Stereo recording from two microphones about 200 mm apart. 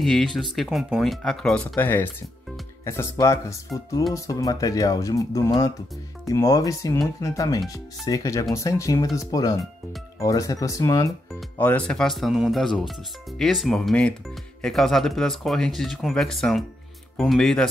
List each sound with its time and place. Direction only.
0.0 s speech: centre (ahead or behind)